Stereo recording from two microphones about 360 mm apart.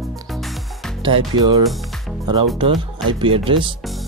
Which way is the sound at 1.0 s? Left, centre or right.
Centre.